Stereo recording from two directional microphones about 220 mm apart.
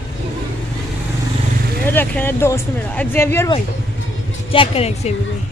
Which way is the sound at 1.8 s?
10° left (ahead or behind).